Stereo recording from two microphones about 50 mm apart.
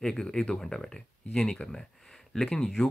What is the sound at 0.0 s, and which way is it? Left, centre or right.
Speech, centre.